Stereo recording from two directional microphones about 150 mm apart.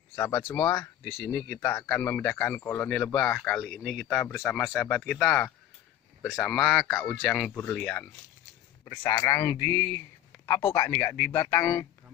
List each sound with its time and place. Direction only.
0.5 s speech: 10° left (ahead or behind)
6.5 s speech: centre (ahead or behind)
7.5 s speech: 10° left (ahead or behind)
8.8 s speech: 20° left (ahead or behind)